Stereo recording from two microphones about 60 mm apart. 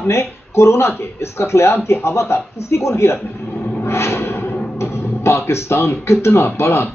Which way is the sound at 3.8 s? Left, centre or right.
Left.